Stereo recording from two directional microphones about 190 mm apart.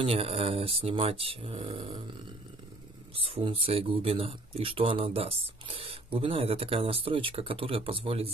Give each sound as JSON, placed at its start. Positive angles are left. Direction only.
{"t": 0.0, "sound": "speech", "side_deg": -30}
{"t": 3.2, "sound": "speech", "side_deg": -30}